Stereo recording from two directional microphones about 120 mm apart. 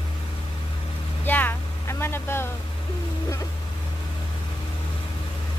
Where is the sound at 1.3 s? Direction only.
15° left (ahead or behind).